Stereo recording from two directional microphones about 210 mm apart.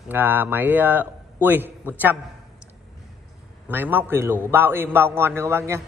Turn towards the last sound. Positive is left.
turn(degrees=-10)  # may be behind; listen again after turning